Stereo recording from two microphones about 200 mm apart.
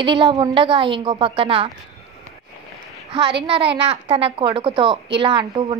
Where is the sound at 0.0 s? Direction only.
25° right (ahead or behind).